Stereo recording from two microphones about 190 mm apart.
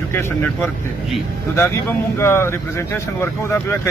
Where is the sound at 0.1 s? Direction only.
10° left (ahead or behind).